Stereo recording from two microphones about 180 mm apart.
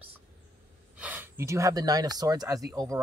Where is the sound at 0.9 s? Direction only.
10° right (ahead or behind).